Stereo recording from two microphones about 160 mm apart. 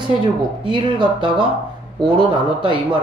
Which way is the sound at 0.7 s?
30° right (ahead or behind).